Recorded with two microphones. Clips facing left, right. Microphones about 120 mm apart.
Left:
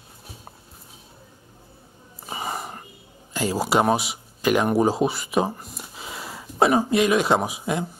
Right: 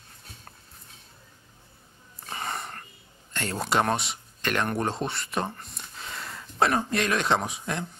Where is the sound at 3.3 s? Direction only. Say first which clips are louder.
Left 5 dB; 5° left (ahead or behind).